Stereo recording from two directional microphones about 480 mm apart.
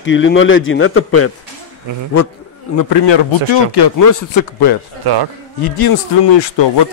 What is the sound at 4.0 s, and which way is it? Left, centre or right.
Speech, left.